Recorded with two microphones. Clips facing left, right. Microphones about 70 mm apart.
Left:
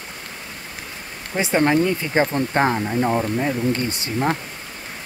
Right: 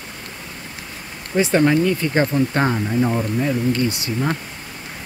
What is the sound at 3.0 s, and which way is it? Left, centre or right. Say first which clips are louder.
Speech: even; left.